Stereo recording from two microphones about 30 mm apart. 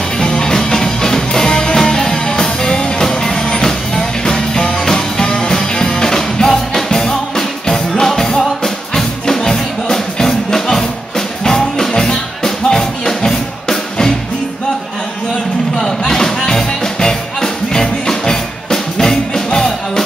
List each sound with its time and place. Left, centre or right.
0.5 s music: left
9.2 s music: left
16.0 s music: centre